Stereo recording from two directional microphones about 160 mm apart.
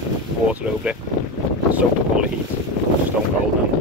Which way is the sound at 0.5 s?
10° right (ahead or behind).